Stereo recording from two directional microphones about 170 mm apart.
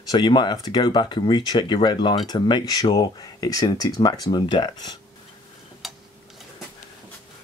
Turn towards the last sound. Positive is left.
turn(degrees=0)  # may be behind; listen again after turning